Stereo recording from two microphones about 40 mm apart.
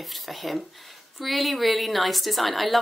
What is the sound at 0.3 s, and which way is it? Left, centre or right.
A woman's voice, centre.